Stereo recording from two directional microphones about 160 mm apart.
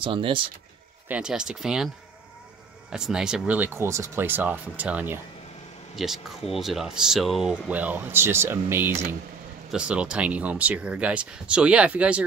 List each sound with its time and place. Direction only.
0.0 s speech: 30° right (ahead or behind)
1.0 s speech: 5° right (ahead or behind)
2.9 s speech: 5° right (ahead or behind)